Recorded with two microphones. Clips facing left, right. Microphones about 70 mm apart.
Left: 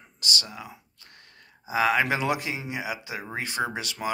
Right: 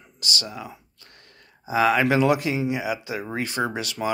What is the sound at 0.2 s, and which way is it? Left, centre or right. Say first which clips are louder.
Speech: right 1 dB; left.